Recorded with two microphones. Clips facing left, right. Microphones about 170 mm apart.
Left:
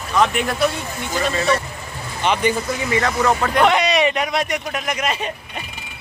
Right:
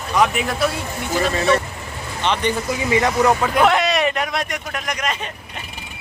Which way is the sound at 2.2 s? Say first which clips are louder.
Left 2 dB; 10° left (ahead or behind).